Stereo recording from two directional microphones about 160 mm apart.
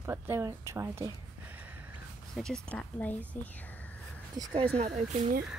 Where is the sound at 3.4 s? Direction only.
10° left (ahead or behind).